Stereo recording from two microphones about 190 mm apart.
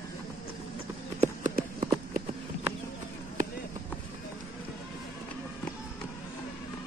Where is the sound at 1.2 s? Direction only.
45° right (ahead or behind).